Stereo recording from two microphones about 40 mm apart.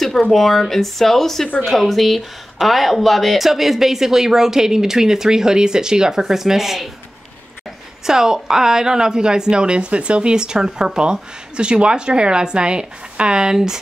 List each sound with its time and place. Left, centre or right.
0.0 s speech: centre
8.1 s a woman's voice: centre